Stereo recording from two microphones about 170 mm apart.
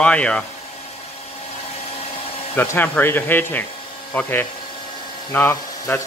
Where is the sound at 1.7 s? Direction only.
35° left (ahead or behind).